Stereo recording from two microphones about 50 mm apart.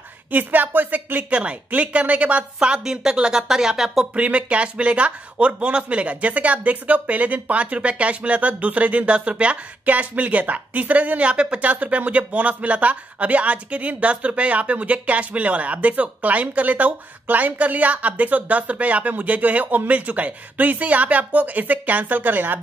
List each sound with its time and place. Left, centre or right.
0.3 s speech: right
1.3 s speech: right; by 4.1 s centre
4.1 s speech: right